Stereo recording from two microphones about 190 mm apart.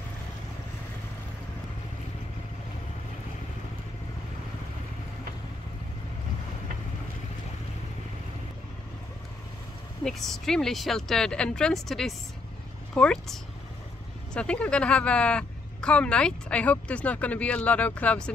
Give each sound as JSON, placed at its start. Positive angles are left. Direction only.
{"t": 10.0, "sound": "speech", "side_deg": 0}